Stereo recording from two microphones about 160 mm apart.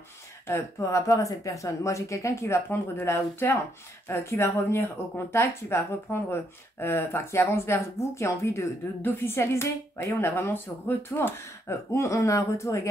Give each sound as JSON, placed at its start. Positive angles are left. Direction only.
{"t": 0.5, "sound": "speech", "side_deg": 15}